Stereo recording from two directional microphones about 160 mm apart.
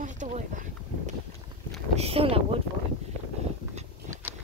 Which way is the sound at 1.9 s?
40° right (ahead or behind).